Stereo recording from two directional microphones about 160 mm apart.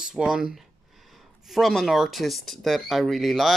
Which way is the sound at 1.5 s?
Centre (ahead or behind).